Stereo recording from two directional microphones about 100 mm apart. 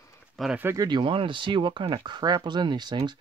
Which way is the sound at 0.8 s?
50° right (ahead or behind).